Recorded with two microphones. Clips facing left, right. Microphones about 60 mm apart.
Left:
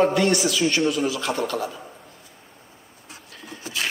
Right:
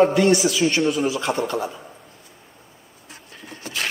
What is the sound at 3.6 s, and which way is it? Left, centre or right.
Patter, right.